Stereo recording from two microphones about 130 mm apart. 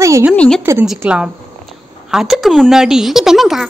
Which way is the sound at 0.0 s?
25° right (ahead or behind).